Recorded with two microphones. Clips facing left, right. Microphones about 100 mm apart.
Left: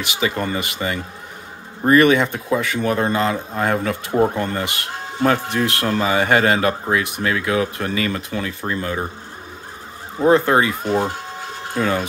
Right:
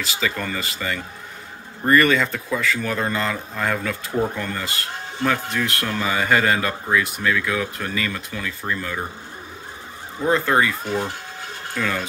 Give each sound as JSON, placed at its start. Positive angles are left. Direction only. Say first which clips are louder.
{"t": 0.0, "sound": "speech", "louder": "left 3 dB", "side_deg": 15}
{"t": 0.7, "sound": "speech", "louder": "left 3 dB", "side_deg": 25}
{"t": 10.2, "sound": "speech", "louder": "left 4 dB", "side_deg": 25}